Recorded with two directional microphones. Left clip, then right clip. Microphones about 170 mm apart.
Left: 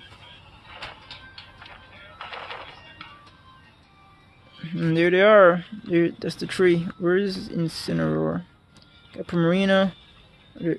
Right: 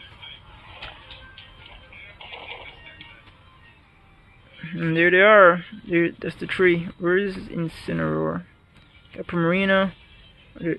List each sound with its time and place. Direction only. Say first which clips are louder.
0.7 s vehicle: left 1 dB; centre (ahead or behind)
1.6 s music: even; 45° left (ahead or behind)
4.6 s speech: right 2 dB; 20° left (ahead or behind)